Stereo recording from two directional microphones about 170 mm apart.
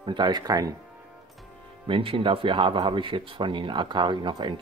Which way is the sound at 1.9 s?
30° right (ahead or behind).